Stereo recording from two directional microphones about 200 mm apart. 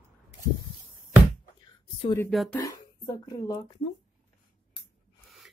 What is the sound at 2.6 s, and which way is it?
Speech, 15° left (ahead or behind).